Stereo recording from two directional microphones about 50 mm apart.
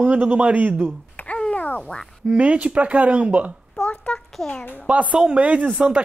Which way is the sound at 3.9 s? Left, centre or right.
Left.